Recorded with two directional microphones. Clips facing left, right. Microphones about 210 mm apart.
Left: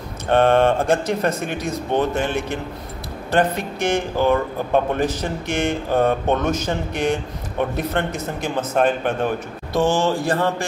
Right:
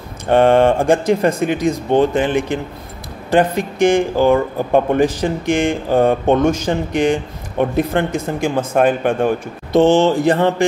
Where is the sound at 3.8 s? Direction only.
15° right (ahead or behind).